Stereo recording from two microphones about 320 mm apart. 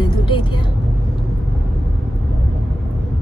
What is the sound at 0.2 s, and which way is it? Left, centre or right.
Vehicle, centre.